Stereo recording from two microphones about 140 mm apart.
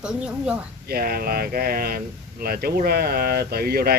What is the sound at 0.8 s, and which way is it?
Speech, 90° right.